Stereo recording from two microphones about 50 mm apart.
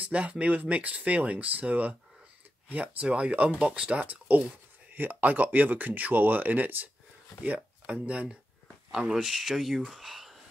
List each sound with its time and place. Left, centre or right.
0.0 s speech: right
4.0 s speech: right
8.9 s speech: centre